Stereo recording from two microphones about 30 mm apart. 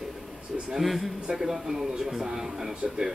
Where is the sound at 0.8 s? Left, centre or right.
Centre.